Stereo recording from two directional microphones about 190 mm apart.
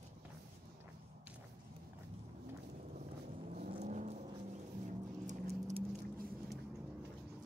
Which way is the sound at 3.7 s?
35° right (ahead or behind).